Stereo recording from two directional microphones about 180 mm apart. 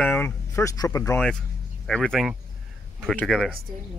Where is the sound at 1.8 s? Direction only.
5° left (ahead or behind).